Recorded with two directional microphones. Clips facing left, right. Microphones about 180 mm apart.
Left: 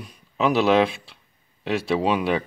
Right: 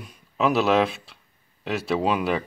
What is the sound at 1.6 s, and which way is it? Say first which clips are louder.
Speech: left 2 dB; centre (ahead or behind).